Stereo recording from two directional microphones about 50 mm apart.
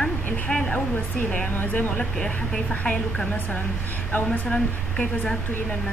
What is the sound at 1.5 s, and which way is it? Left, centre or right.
Speech, left.